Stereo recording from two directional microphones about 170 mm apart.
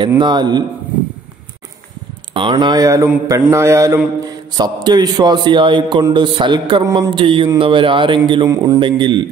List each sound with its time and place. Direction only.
0.2 s a man's voice: 25° right (ahead or behind)
2.3 s a man's voice: 25° right (ahead or behind)